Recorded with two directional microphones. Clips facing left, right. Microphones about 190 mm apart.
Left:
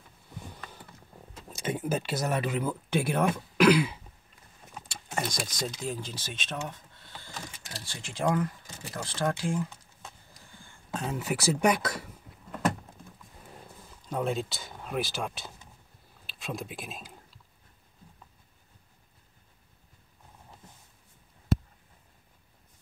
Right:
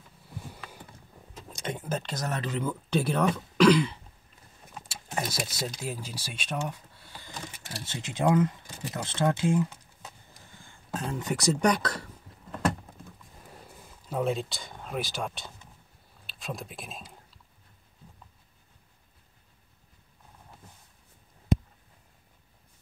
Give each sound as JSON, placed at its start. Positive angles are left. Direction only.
{"t": 1.5, "sound": "speech", "side_deg": 5}
{"t": 4.7, "sound": "speech", "side_deg": -5}
{"t": 10.9, "sound": "a sound", "side_deg": 0}
{"t": 14.0, "sound": "speech", "side_deg": 0}